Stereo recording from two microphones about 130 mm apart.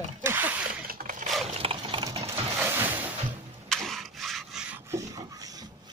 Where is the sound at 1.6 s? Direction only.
40° right (ahead or behind).